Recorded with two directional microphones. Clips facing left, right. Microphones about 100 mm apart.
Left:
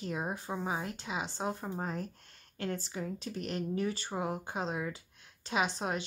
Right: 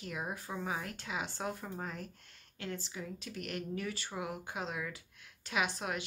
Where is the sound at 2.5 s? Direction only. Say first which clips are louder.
Left 5 dB; 45° left (ahead or behind).